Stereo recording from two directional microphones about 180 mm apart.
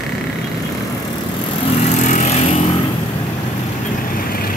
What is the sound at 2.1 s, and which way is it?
Vehicle, 40° left (ahead or behind).